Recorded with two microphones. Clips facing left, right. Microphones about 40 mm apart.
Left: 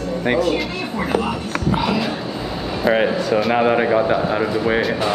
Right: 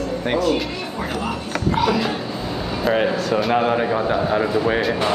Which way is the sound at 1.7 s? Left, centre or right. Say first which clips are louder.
Right 3 dB; centre.